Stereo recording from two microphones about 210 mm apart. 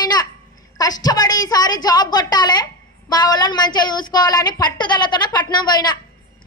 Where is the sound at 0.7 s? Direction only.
20° left (ahead or behind).